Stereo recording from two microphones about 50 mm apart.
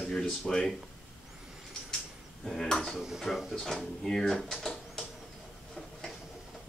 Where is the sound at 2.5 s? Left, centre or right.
Centre.